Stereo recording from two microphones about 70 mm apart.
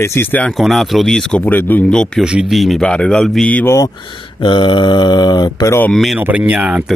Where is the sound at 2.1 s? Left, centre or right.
Centre.